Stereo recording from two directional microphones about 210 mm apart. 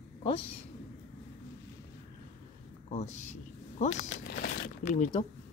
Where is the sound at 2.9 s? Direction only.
35° left (ahead or behind).